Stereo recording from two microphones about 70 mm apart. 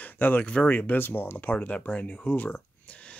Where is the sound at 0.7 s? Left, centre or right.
Left.